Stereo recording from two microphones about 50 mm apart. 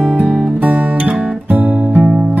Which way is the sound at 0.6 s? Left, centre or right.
Right.